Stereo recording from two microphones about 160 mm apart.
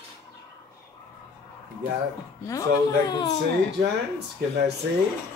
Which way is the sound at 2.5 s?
25° left (ahead or behind).